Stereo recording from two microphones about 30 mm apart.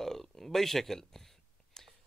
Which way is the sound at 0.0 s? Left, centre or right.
Centre.